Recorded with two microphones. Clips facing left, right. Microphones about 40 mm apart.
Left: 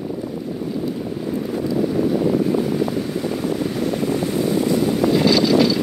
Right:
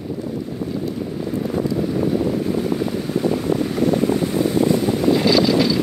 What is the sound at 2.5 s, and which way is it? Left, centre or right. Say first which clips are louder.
Boat: left 1 dB; centre.